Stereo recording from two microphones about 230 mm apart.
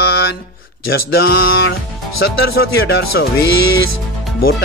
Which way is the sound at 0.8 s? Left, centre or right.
Left.